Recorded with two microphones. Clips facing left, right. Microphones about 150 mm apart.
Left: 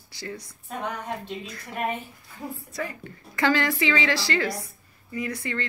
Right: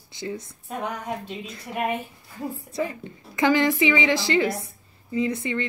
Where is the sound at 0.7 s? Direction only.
10° right (ahead or behind).